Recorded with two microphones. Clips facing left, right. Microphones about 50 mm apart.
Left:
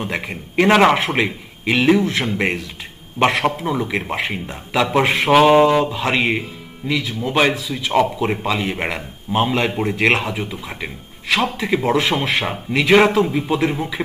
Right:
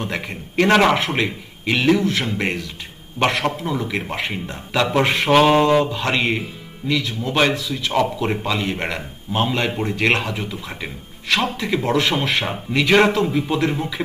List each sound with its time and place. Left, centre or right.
0.0 s a man's voice: centre